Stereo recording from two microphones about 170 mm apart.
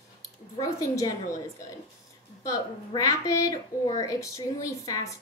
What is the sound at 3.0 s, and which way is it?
A woman's voice, 20° left (ahead or behind).